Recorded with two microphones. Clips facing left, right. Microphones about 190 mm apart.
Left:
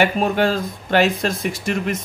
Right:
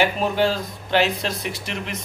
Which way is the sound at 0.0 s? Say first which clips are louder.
Left 2 dB; 50° left (ahead or behind).